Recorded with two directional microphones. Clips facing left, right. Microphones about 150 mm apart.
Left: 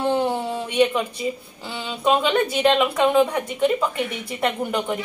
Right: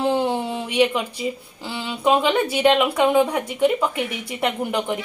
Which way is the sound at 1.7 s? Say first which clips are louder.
Right 1 dB; 10° right (ahead or behind).